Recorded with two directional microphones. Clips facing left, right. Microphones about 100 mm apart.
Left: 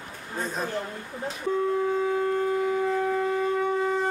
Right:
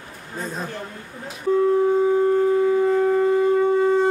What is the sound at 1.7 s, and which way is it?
Shofar, 30° right (ahead or behind).